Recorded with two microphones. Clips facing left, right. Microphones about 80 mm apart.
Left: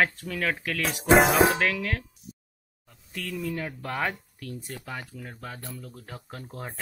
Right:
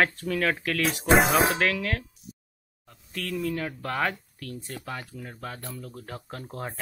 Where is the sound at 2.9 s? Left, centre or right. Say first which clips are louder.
Right 2 dB; centre.